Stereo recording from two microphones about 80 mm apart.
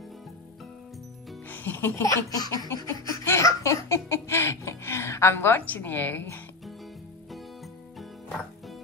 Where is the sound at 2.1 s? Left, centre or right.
Left.